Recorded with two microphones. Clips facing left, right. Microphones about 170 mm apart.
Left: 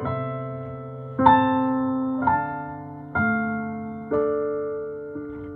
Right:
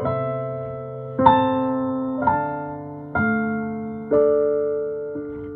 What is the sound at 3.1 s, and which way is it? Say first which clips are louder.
Electric piano: right 3 dB; 50° right (ahead or behind).